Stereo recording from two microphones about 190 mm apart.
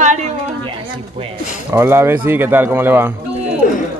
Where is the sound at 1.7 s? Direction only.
10° right (ahead or behind).